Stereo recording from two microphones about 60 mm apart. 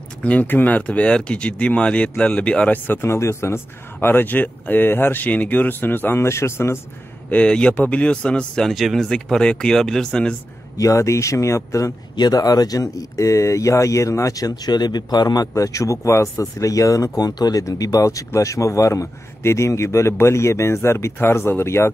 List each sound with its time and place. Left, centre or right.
0.2 s speech: left
2.9 s speech: left
6.2 s speech: left
7.2 s speech: centre
8.7 s speech: centre
9.1 s speech: centre
10.8 s speech: left
17.2 s speech: left